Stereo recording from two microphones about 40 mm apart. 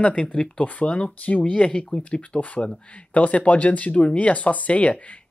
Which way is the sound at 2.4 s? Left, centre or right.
Left.